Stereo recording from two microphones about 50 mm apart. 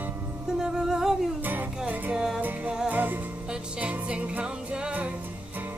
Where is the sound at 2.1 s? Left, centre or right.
Centre.